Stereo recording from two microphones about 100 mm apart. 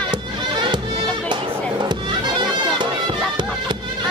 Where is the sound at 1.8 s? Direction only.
50° right (ahead or behind).